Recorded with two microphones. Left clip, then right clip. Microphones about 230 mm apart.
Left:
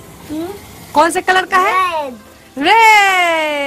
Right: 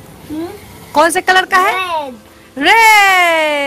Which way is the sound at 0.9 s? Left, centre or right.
Centre.